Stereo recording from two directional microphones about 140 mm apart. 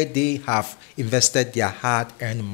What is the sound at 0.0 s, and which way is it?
Speech, 10° left (ahead or behind).